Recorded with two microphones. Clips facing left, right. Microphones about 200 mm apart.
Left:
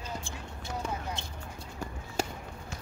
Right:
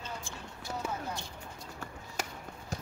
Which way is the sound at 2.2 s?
30° left (ahead or behind).